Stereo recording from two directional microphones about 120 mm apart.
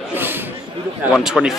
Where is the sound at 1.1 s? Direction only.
5° right (ahead or behind).